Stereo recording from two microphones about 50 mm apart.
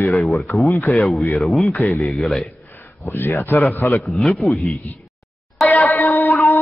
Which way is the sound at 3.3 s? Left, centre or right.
Left.